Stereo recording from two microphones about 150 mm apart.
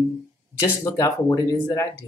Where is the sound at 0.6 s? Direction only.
20° left (ahead or behind).